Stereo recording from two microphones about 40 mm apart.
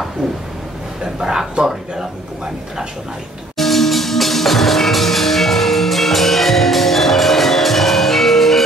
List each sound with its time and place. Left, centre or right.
1.2 s speech: centre
3.5 s music: centre